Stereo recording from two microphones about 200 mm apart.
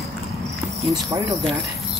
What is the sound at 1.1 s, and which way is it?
Speech, 15° right (ahead or behind).